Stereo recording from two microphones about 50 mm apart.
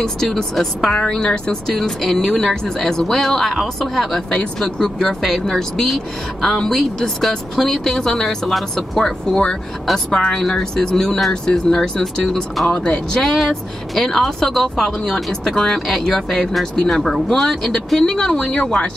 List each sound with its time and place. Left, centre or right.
0.0 s a woman's voice: centre
1.8 s a woman's voice: centre
12.6 s speech: left
13.1 s speech: centre
15.4 s a woman's voice: centre